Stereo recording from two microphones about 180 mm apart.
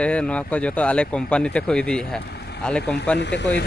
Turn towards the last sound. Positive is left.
turn(degrees=75)  # may be behind; listen again after turning